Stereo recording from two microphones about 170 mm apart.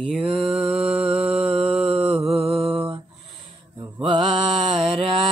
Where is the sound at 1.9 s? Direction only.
35° right (ahead or behind).